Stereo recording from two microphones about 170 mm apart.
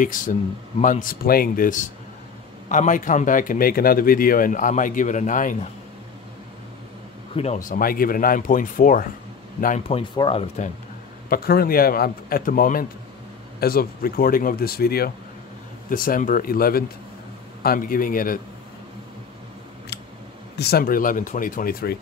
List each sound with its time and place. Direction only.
0.0 s a man's voice: 50° left (ahead or behind)
7.5 s a man's voice: 50° left (ahead or behind)
9.8 s speech: 35° left (ahead or behind)
11.2 s a man's voice: 65° left (ahead or behind)
20.5 s a man's voice: 70° left (ahead or behind)